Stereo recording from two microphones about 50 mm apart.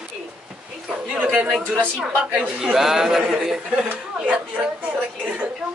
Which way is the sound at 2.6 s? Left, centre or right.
Centre.